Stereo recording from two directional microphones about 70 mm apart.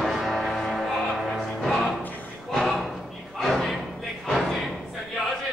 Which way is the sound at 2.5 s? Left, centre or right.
Centre.